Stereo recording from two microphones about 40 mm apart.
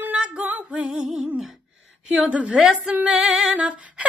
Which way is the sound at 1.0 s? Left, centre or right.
Centre.